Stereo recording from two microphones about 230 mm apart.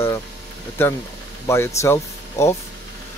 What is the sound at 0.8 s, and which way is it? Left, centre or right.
Speech, centre.